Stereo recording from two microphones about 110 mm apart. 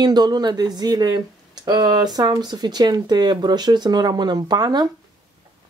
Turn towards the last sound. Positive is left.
turn(degrees=-35)  # may be behind; listen again after turning